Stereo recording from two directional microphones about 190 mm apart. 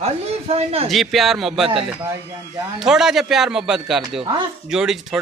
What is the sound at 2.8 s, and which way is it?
Speech, 5° right (ahead or behind).